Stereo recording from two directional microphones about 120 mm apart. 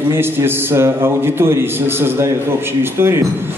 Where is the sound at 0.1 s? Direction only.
20° right (ahead or behind).